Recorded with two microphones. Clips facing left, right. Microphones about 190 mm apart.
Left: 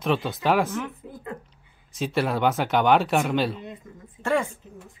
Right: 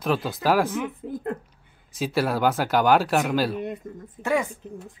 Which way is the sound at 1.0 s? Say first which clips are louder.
Right 9 dB; 55° right (ahead or behind).